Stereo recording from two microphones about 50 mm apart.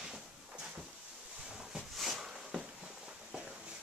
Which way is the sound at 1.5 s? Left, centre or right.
Centre.